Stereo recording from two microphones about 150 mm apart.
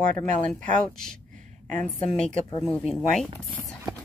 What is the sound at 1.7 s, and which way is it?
A woman's voice, 10° left (ahead or behind).